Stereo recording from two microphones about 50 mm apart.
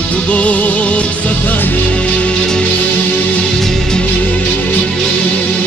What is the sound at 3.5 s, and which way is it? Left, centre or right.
Music, centre.